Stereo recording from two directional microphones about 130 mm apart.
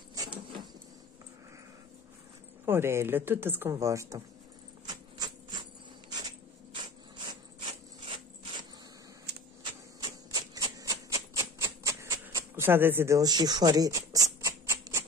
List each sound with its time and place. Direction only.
2.6 s speech: 20° right (ahead or behind)
4.8 s a sound: 35° right (ahead or behind)
8.0 s mechanisms: 45° right (ahead or behind)
10.0 s typewriter: 30° right (ahead or behind)